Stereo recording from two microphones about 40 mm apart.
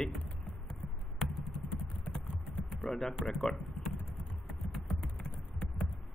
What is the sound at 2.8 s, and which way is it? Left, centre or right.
Speech, centre.